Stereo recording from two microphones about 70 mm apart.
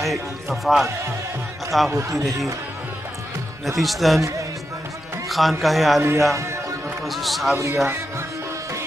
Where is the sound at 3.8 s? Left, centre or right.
Centre.